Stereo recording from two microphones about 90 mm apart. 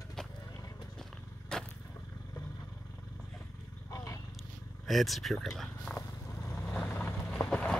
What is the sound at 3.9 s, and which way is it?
Roaring cats, 35° left (ahead or behind).